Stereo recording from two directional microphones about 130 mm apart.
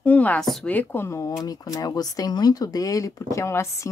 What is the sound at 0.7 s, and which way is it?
Speech, 15° left (ahead or behind).